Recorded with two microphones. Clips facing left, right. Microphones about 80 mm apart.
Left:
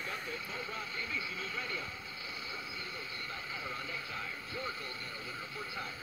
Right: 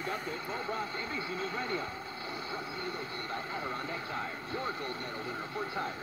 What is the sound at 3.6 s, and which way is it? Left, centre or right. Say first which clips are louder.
Speech: right 5 dB; right.